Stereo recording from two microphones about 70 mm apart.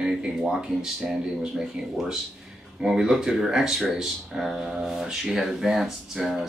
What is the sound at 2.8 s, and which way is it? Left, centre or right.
Speech, centre.